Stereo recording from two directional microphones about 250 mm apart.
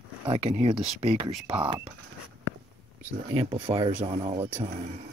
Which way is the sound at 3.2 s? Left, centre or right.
Right.